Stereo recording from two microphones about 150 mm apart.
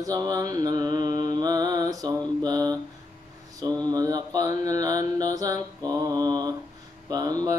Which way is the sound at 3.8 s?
25° right (ahead or behind).